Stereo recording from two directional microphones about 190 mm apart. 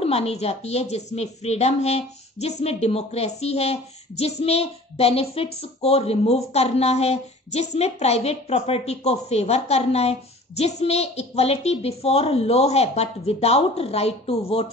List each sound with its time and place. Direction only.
0.0 s speech: 30° left (ahead or behind)